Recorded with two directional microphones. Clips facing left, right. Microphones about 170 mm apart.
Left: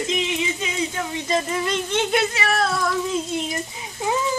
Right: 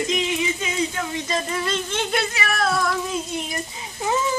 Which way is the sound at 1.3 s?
20° left (ahead or behind).